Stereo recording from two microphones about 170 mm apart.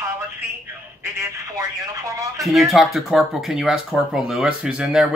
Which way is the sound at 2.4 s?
Centre (ahead or behind).